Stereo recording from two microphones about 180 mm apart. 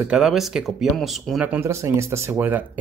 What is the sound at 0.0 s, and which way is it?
Speech, 5° right (ahead or behind).